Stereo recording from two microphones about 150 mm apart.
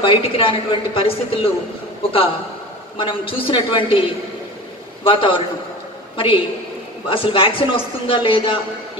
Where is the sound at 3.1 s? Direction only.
35° left (ahead or behind).